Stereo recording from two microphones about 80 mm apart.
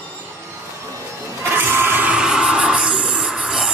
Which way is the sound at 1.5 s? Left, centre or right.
Right.